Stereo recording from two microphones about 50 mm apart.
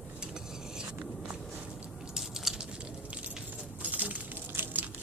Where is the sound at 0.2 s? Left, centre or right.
Centre.